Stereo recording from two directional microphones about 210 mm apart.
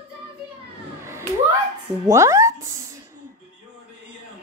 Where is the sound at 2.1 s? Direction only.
15° right (ahead or behind).